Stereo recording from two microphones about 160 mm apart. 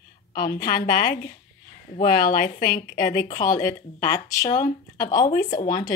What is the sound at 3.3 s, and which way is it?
Speech, 20° left (ahead or behind).